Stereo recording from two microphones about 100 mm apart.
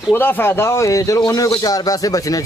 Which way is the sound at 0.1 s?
20° left (ahead or behind).